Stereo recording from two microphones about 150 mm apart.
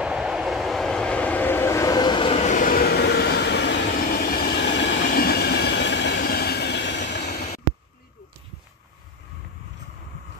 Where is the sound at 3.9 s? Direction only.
90° left.